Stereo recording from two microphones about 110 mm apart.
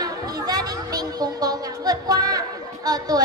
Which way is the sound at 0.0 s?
35° right (ahead or behind).